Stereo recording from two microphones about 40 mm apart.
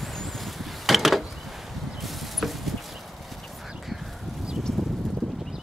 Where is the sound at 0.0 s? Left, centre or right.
Centre.